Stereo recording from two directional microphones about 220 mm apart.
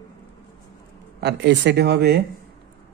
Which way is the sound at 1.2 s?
50° right (ahead or behind).